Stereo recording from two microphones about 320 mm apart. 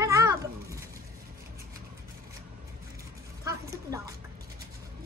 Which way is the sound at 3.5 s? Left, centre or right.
Centre.